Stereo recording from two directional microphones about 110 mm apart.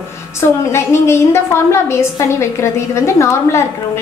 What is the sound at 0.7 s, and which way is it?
A woman's voice, 25° left (ahead or behind).